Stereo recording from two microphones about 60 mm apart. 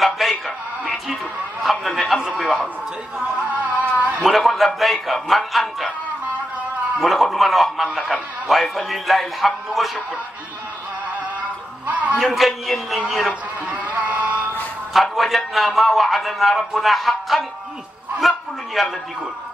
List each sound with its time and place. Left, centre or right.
0.0 s music: centre
1.6 s a man's voice: centre
4.2 s a man's voice: centre
7.0 s a man's voice: centre
11.9 s speech: right
12.2 s a man's voice: centre
13.3 s a sound: right
15.0 s a man's voice: centre